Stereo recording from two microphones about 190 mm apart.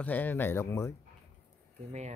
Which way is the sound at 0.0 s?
10° left (ahead or behind).